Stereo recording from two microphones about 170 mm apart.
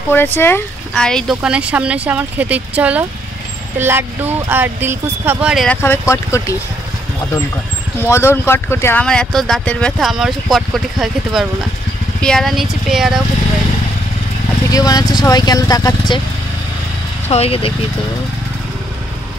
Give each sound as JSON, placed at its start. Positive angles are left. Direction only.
{"t": 0.1, "sound": "speech", "side_deg": 10}
{"t": 5.7, "sound": "speech", "side_deg": 15}
{"t": 8.1, "sound": "speech", "side_deg": 15}
{"t": 14.7, "sound": "speech", "side_deg": 20}
{"t": 17.3, "sound": "speech", "side_deg": 35}